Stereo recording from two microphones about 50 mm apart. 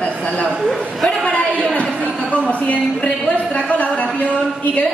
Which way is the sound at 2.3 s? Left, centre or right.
Left.